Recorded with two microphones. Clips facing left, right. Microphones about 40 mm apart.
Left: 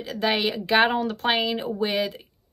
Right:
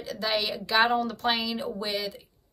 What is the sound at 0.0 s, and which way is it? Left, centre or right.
A woman's voice, left.